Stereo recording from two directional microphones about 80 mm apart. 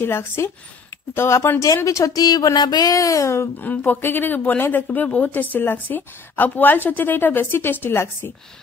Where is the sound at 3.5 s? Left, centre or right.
Left.